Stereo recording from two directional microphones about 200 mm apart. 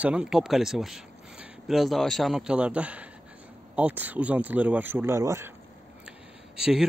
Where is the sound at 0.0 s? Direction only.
5° right (ahead or behind).